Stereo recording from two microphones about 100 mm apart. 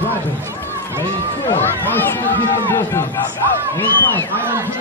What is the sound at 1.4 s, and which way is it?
Speech, 20° left (ahead or behind).